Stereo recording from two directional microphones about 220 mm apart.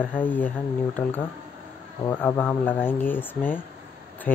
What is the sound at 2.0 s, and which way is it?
Speech, 10° left (ahead or behind).